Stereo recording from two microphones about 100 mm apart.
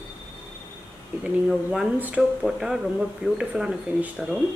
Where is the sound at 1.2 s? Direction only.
5° right (ahead or behind).